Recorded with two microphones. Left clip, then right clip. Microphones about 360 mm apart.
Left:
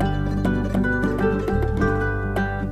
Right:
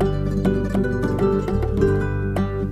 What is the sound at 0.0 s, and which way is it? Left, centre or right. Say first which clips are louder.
Music: right 2 dB; left.